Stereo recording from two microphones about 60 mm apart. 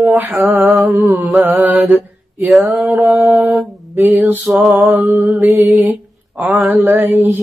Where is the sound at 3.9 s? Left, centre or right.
Right.